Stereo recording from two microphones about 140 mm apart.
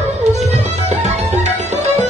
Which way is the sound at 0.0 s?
50° right (ahead or behind).